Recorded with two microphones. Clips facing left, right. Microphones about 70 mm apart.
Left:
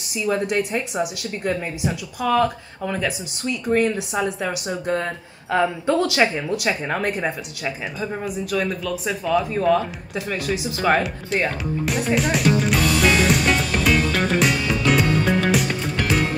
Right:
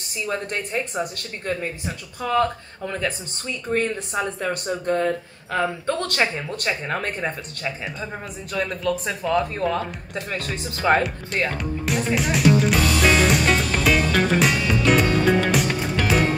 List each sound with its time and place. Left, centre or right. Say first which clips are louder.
0.2 s speech: left 6 dB; centre